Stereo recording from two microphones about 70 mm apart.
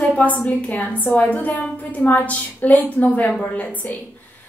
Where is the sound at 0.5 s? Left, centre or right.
Left.